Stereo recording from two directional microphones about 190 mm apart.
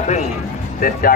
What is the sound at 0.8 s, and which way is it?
Speech, 50° left (ahead or behind).